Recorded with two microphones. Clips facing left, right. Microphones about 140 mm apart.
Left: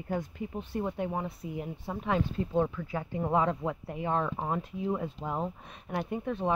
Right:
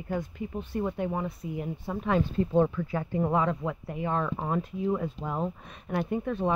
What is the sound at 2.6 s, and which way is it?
Speech, centre (ahead or behind).